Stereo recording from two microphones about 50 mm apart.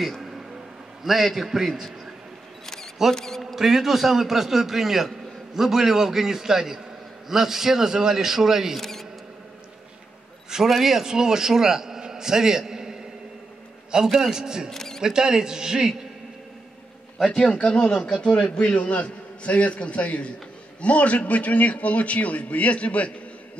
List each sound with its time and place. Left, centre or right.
0.0 s a sound: centre
1.0 s a man's voice: centre
2.6 s camera: centre
3.2 s speech: centre
3.5 s a man's voice: centre
8.7 s speech: centre
10.5 s a man's voice: centre
14.0 s a man's voice: centre
14.3 s a man's voice: centre
14.7 s single-lens reflex camera: centre
15.0 s a man's voice: centre
17.3 s a man's voice: centre
17.6 s a man's voice: left